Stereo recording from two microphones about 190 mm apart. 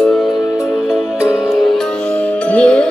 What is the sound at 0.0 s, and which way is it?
Music, 5° left (ahead or behind).